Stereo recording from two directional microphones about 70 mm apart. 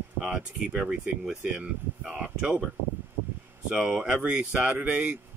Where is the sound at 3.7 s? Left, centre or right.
Centre.